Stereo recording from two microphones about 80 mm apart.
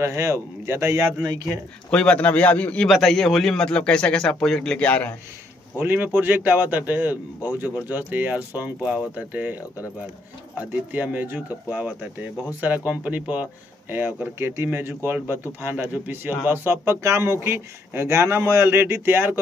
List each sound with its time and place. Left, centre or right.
0.0 s speech: right
1.9 s a man's voice: centre
2.9 s a man's voice: centre
5.8 s speech: right
10.9 s speech: centre